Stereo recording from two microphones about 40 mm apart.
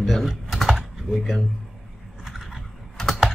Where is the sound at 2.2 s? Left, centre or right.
Centre.